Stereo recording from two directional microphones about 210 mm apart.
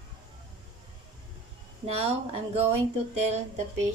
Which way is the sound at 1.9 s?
30° right (ahead or behind).